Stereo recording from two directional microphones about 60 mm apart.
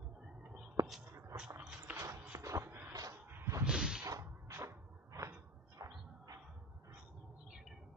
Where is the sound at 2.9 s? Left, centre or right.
Right.